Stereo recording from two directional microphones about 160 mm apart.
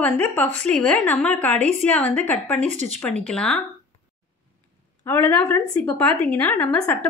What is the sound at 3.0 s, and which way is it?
Speech, 5° left (ahead or behind).